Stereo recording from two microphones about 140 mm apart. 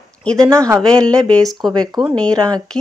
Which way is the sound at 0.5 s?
20° right (ahead or behind).